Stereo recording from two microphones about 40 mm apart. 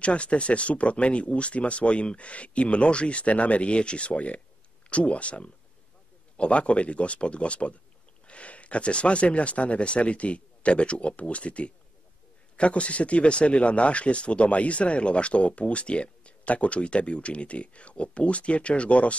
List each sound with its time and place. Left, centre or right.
0.0 s speech: left